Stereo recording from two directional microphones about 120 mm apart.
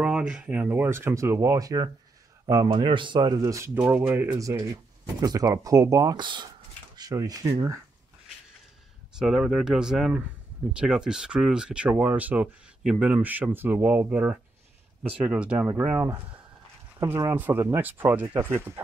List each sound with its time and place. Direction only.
0.3 s speech: 10° right (ahead or behind); by 2.7 s 30° right (ahead or behind)
2.7 s speech: 45° right (ahead or behind); by 3.7 s 25° right (ahead or behind)
3.7 s speech: 15° right (ahead or behind); by 7.8 s 30° right (ahead or behind)
9.2 s speech: 5° right (ahead or behind); by 17.4 s 25° right (ahead or behind)
17.4 s speech: 15° right (ahead or behind)